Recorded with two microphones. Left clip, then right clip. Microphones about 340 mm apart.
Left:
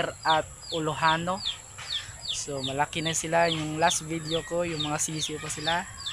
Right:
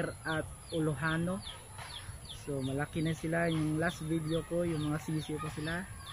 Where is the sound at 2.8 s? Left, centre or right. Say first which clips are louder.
Left 7 dB; left.